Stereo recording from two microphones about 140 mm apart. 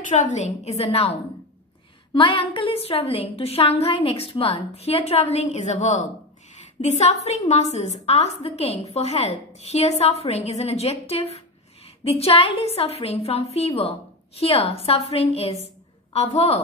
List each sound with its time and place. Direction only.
0.0 s a woman's voice: 65° left (ahead or behind); by 1.1 s 45° left (ahead or behind)
2.1 s a woman's voice: 40° left (ahead or behind)